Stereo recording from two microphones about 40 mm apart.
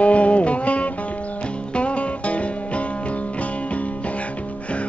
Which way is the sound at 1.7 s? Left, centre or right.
Left.